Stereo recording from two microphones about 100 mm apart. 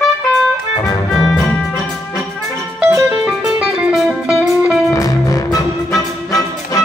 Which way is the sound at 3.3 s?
5° right (ahead or behind).